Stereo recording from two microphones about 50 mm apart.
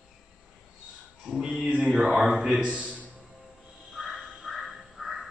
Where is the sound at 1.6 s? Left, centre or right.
Right.